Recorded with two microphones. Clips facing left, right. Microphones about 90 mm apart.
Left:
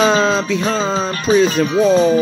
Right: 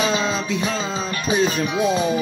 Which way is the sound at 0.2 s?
90° left.